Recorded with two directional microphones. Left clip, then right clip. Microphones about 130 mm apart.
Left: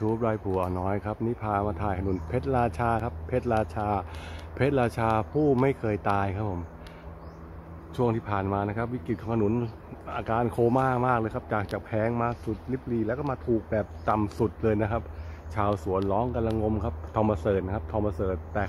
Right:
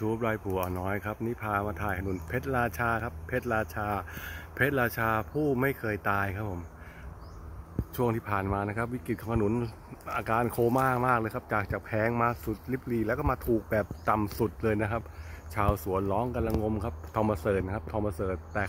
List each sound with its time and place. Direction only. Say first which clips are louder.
0.0 s speech: left 3 dB; 15° right (ahead or behind)
7.9 s speech: left 2 dB; 25° right (ahead or behind); by 13.8 s 40° right (ahead or behind)
14.0 s speech: left 2 dB; 25° right (ahead or behind)